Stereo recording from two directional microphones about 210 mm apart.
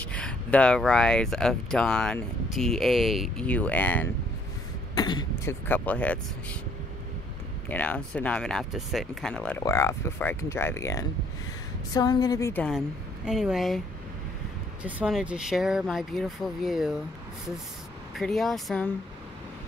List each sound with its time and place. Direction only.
0.1 s speech: 5° left (ahead or behind)
4.9 s speech: 20° left (ahead or behind)
7.6 s speech: 10° left (ahead or behind)
12.7 s speech: centre (ahead or behind)
18.1 s speech: centre (ahead or behind)